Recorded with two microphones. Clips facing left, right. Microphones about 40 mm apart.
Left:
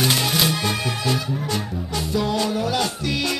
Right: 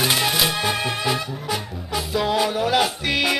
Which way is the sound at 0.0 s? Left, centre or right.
Centre.